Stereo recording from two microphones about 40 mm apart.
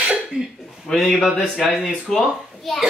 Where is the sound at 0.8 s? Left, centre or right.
Centre.